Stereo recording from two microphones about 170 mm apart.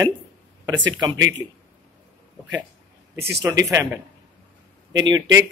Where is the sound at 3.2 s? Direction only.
75° right (ahead or behind).